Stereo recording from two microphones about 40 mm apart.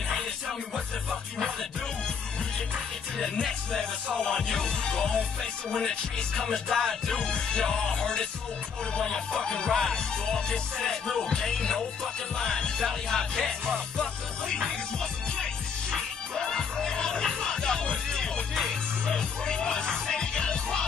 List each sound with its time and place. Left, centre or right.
3.7 s music: centre
15.9 s music: centre
18.5 s music: centre
19.0 s music: centre